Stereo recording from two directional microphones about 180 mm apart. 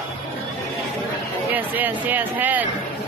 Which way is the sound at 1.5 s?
10° right (ahead or behind).